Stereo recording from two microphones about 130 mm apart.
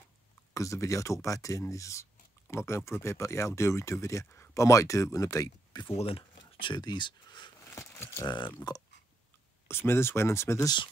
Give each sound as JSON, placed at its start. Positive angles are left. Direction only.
{"t": 0.6, "sound": "speech", "side_deg": 25}
{"t": 5.9, "sound": "speech", "side_deg": 45}
{"t": 7.7, "sound": "speech", "side_deg": 20}
{"t": 8.6, "sound": "speech", "side_deg": 35}
{"t": 9.7, "sound": "speech", "side_deg": 20}